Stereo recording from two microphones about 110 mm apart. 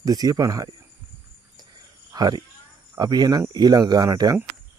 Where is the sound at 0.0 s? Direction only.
35° right (ahead or behind).